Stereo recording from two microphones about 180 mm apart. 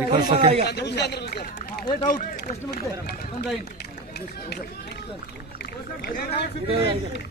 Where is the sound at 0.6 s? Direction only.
65° left (ahead or behind).